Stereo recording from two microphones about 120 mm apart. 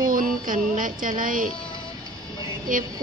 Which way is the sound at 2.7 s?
90° right.